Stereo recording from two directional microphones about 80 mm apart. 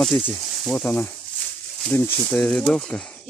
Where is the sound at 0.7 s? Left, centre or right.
Left.